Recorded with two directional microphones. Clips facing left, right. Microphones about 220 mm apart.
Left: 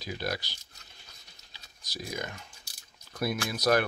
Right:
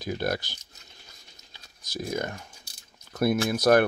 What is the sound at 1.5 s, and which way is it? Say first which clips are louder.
Typing: right 7 dB; 50° right (ahead or behind).